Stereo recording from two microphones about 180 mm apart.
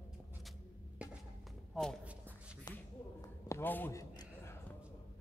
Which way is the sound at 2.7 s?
20° left (ahead or behind).